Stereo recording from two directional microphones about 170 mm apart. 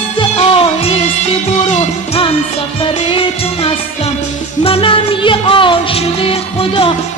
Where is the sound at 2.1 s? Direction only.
35° left (ahead or behind).